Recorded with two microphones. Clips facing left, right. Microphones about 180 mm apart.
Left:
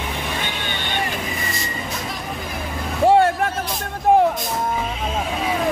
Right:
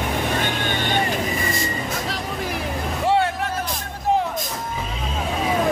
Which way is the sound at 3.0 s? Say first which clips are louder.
Left 6 dB; 45° left (ahead or behind).